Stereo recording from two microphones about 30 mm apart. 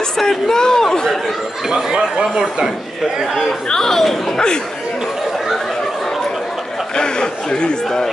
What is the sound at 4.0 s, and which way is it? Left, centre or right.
Speech, centre.